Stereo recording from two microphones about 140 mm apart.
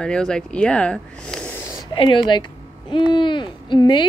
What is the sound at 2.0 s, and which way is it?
Speech, 35° left (ahead or behind).